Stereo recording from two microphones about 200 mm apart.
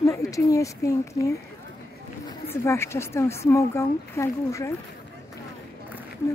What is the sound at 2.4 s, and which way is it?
Speech, 15° left (ahead or behind).